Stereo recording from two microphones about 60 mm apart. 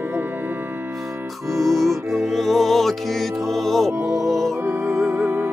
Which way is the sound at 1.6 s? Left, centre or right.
Centre.